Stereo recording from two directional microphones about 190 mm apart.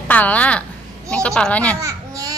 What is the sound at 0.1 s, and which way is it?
A woman's voice, 10° left (ahead or behind).